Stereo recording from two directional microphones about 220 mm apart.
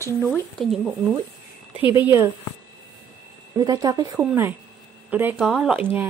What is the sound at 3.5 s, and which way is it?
A woman's voice, 15° right (ahead or behind).